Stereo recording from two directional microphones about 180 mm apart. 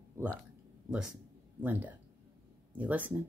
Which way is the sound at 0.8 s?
5° right (ahead or behind).